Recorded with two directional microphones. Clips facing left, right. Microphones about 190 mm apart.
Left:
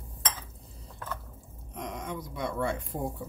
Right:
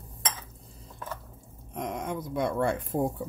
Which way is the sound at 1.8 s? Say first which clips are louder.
Right 4 dB; 50° right (ahead or behind).